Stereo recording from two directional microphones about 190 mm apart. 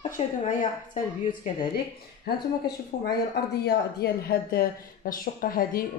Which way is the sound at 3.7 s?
60° left (ahead or behind).